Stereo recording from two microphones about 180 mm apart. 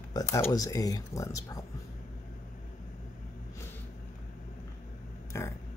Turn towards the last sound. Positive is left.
turn(degrees=15)  # may be behind; listen again after turning